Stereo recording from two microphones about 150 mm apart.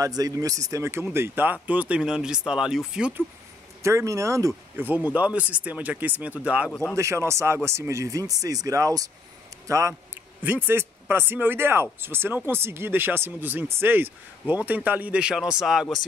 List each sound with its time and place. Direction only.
0.0 s speech: 25° right (ahead or behind); by 3.3 s 5° right (ahead or behind)
3.8 s speech: 20° right (ahead or behind)
6.7 s speech: 5° left (ahead or behind)
7.0 s speech: 20° right (ahead or behind); by 16.0 s 5° right (ahead or behind)